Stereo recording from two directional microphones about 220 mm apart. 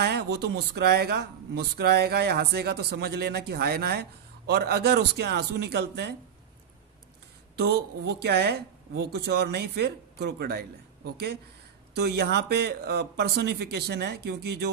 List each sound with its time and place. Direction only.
0.0 s speech: 50° right (ahead or behind)
7.5 s speech: 50° right (ahead or behind)
11.9 s speech: 45° right (ahead or behind)